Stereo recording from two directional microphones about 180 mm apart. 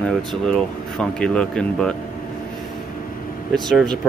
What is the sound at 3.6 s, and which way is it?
Speech, centre (ahead or behind).